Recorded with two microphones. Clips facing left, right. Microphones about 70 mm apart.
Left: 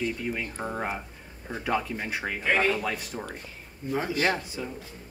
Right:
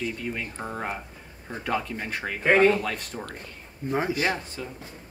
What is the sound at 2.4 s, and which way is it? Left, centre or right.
Speech, right.